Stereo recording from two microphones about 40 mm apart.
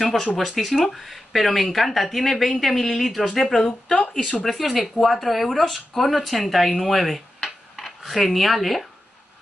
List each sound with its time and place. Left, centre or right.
0.0 s speech: centre
3.6 s speech: centre
4.5 s speech: centre